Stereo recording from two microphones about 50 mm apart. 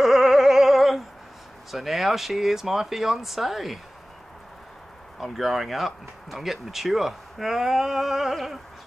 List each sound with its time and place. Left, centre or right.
0.0 s a sound: centre
1.7 s speech: centre
5.2 s speech: centre